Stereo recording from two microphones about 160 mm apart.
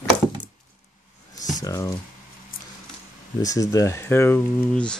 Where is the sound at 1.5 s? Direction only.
20° left (ahead or behind).